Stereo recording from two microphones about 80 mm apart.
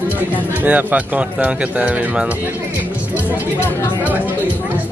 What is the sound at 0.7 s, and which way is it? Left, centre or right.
Speech, centre.